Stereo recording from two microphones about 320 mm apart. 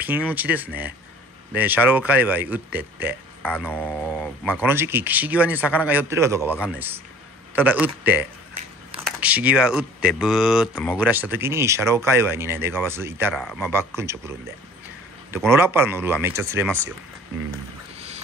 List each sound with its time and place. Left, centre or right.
0.0 s a man's voice: centre
3.4 s a man's voice: centre
11.0 s speech: centre
15.3 s speech: centre
17.9 s a sound: centre